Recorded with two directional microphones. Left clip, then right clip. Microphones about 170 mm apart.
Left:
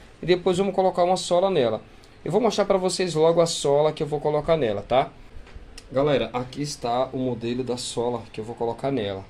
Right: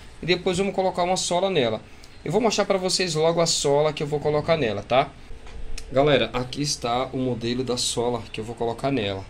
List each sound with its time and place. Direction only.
0.2 s speech: 20° left (ahead or behind)